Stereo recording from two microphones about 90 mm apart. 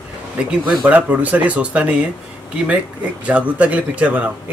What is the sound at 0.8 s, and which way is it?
Speech, 15° right (ahead or behind).